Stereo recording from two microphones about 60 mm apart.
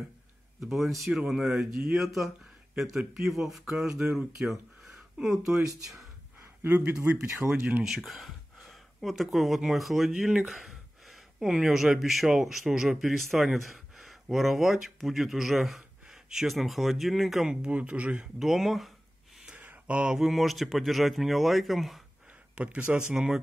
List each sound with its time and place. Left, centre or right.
0.6 s speech: centre
6.8 s speech: centre
7.8 s speech: centre
10.1 s speech: centre
10.5 s speech: centre; by 18.3 s right
18.4 s speech: centre
19.5 s a sound: right
20.1 s speech: centre
22.6 s speech: centre
23.1 s speech: centre